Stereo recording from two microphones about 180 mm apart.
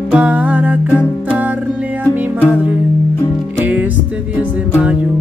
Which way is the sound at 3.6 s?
10° right (ahead or behind).